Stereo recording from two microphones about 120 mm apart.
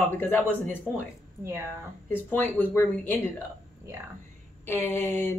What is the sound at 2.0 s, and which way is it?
Speech, 15° left (ahead or behind).